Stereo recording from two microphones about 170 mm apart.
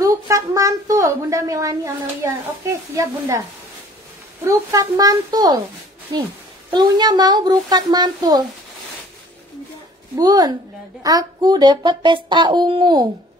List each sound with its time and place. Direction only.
0.0 s a child's voice: 20° right (ahead or behind)
4.5 s a child's voice: 20° right (ahead or behind)
10.1 s a child's voice: 25° right (ahead or behind)